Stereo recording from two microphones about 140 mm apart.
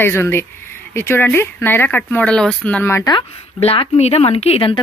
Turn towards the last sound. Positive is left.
turn(degrees=40)  # may be behind; listen again after turning